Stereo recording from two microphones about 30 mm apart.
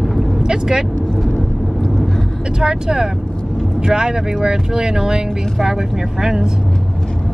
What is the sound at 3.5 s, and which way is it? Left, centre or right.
Vehicle, right.